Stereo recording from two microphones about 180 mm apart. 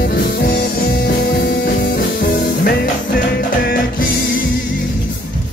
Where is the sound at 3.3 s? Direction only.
60° left (ahead or behind).